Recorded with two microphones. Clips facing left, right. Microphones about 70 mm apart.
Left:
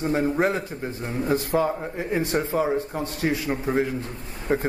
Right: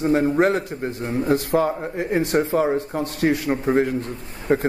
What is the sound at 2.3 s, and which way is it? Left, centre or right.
A man's voice, right.